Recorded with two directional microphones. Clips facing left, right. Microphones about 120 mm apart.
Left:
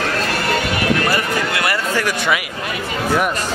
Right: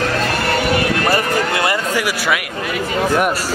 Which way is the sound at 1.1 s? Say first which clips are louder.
Right 3 dB; 25° right (ahead or behind).